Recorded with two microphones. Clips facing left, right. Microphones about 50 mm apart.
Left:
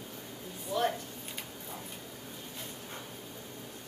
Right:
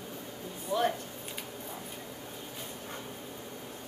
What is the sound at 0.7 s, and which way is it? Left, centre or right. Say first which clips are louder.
Speech: right 2 dB; centre.